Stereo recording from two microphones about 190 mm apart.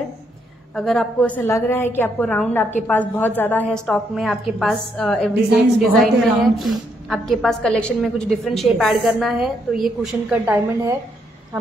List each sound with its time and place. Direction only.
0.7 s a woman's voice: 5° left (ahead or behind)